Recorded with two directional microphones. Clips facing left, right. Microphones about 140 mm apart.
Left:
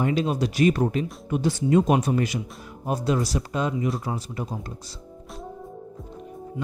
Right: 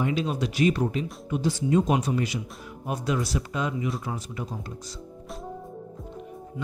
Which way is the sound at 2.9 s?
35° left (ahead or behind).